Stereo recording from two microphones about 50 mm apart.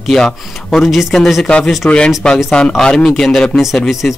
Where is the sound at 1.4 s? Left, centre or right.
Centre.